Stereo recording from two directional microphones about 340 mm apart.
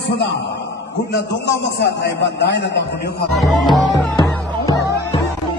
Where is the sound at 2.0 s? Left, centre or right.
Left.